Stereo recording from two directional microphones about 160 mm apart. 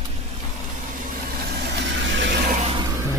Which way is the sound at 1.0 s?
90° right.